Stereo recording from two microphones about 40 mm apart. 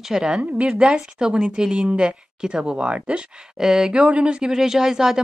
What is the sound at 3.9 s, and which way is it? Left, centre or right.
Speech, right.